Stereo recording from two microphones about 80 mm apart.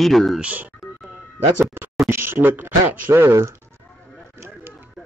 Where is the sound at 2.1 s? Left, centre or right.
Right.